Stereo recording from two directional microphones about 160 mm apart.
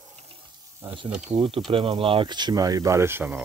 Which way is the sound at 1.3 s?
35° right (ahead or behind).